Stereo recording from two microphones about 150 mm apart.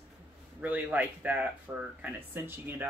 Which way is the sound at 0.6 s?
10° right (ahead or behind).